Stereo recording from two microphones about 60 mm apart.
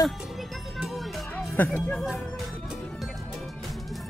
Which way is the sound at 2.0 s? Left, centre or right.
Centre.